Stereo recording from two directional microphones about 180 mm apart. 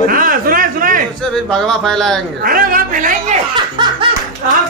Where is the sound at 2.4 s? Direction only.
55° right (ahead or behind).